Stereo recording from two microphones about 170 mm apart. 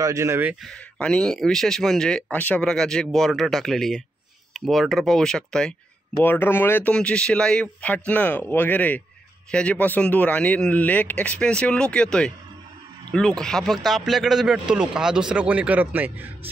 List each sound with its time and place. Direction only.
0.0 s speech: 20° right (ahead or behind)
0.7 s speech: 5° left (ahead or behind)